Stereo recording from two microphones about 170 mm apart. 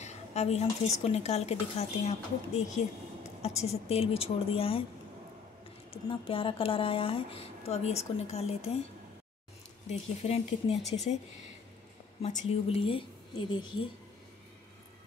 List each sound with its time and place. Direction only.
0.0 s a sound: 40° left (ahead or behind)
1.0 s a woman's voice: 40° left (ahead or behind)
5.9 s a woman's voice: 30° left (ahead or behind)
9.8 s a woman's voice: 40° left (ahead or behind)
10.8 s speech: centre (ahead or behind)
12.2 s a woman's voice: 40° left (ahead or behind)